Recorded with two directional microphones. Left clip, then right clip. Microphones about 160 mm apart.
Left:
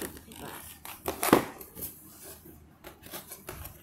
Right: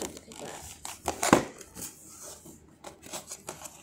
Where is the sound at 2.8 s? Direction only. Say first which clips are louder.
Right 3 dB; 40° right (ahead or behind).